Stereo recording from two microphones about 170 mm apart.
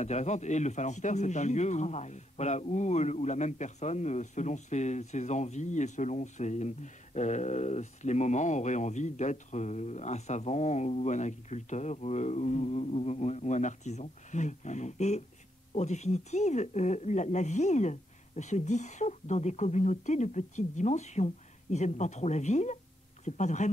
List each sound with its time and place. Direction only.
0.0 s speech: 40° left (ahead or behind)